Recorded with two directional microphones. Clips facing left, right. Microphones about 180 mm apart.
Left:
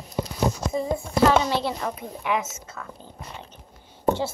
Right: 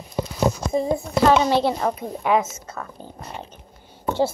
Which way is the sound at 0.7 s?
30° right (ahead or behind).